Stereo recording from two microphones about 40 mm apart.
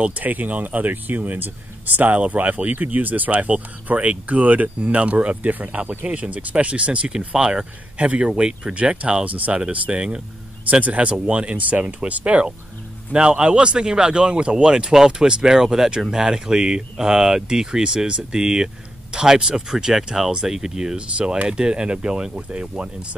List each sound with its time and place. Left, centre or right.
0.1 s speech: right
2.1 s speech: right
13.1 s speech: right